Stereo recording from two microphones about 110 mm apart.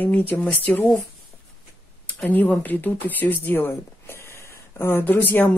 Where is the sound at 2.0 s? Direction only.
15° left (ahead or behind).